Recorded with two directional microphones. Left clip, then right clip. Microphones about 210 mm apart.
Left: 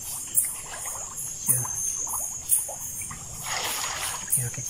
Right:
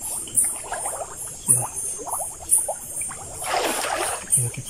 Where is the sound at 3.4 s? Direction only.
55° right (ahead or behind).